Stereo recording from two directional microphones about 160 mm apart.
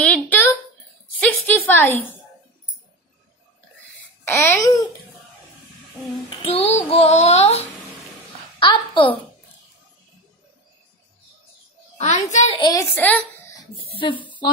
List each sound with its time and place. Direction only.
0.0 s a sound: 10° left (ahead or behind)
4.2 s a child's voice: 15° left (ahead or behind)
6.4 s child singing: 40° left (ahead or behind)
8.5 s a woman's voice: 30° left (ahead or behind)
12.0 s a child's voice: 45° left (ahead or behind)
12.5 s a child's voice: 30° left (ahead or behind)
12.9 s a woman's voice: 10° left (ahead or behind)
13.8 s child singing: 30° left (ahead or behind)